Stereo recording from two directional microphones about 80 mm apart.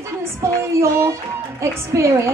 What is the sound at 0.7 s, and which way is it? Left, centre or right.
A woman's voice, right.